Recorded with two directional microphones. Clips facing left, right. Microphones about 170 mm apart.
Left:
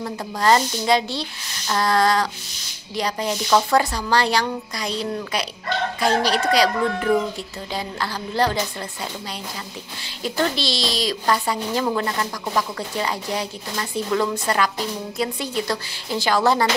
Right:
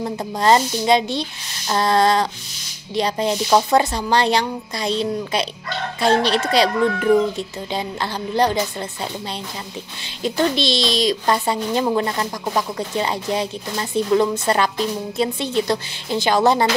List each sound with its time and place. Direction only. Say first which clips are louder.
0.0 s speech: right 2 dB; 20° right (ahead or behind)
10.0 s speech: right 3 dB; 20° right (ahead or behind)